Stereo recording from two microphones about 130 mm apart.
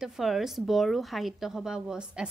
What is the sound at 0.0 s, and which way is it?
A woman's voice, 5° right (ahead or behind).